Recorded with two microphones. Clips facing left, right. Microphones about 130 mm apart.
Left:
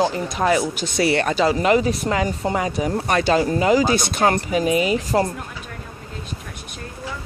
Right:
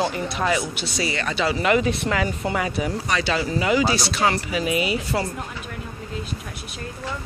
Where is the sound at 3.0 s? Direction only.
50° left (ahead or behind).